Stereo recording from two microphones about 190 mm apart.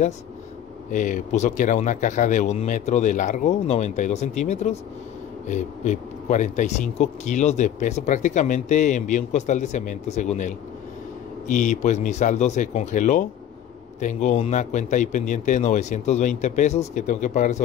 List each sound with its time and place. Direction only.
0.9 s speech: 45° left (ahead or behind)